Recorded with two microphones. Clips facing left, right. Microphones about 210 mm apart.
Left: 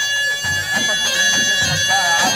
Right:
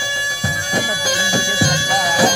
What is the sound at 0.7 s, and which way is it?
Bagpipes, 50° right (ahead or behind).